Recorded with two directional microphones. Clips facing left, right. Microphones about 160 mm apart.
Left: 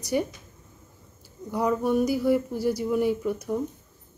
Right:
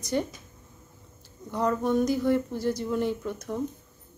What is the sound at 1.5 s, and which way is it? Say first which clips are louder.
A woman's voice: left 1 dB; 10° left (ahead or behind).